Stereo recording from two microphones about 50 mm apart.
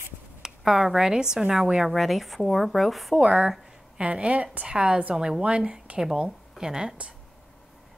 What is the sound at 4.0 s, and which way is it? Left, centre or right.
A woman's voice, right.